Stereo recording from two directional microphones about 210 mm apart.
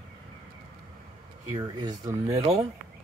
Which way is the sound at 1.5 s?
20° right (ahead or behind).